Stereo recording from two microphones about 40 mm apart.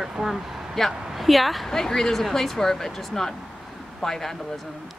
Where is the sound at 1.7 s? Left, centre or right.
Centre.